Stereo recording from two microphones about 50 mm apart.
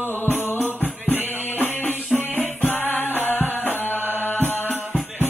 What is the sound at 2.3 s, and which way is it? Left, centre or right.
Music, left.